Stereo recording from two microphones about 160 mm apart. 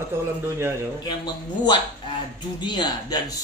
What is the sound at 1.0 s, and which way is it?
Speech, 25° left (ahead or behind).